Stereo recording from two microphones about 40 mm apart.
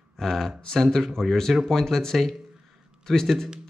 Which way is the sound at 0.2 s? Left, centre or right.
Centre.